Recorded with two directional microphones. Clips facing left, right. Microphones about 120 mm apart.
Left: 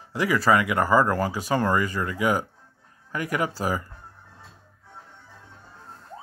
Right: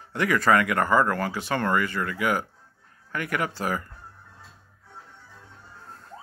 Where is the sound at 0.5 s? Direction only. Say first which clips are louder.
Left 1 dB; 15° left (ahead or behind).